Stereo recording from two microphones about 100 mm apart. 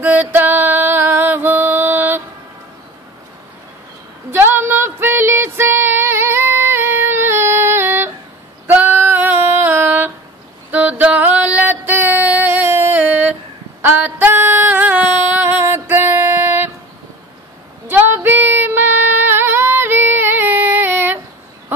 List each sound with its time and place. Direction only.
0.0 s music: 15° right (ahead or behind)
4.3 s a sound: 20° right (ahead or behind)
8.6 s female singing: 20° right (ahead or behind)
10.7 s music: 15° right (ahead or behind)
13.7 s female singing: 20° right (ahead or behind)
17.8 s female singing: 20° right (ahead or behind)